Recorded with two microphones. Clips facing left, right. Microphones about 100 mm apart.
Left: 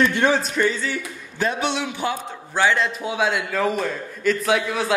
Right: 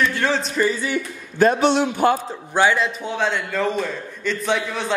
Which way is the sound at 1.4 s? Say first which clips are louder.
Right 7 dB; 40° right (ahead or behind).